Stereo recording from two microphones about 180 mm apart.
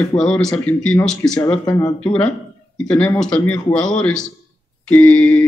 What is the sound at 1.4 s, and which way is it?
Speech, 15° left (ahead or behind).